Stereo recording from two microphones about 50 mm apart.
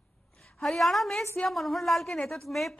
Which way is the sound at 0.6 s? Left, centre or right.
Centre.